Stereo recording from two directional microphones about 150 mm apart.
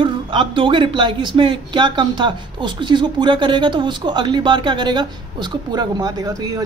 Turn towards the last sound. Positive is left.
turn(degrees=-25)  # may be behind; listen again after turning